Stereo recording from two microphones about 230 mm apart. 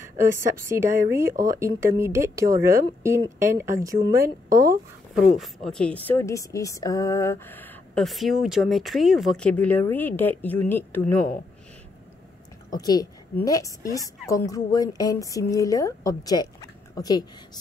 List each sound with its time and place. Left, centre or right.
0.2 s a woman's voice: centre
5.4 s a woman's voice: centre
12.7 s a woman's voice: centre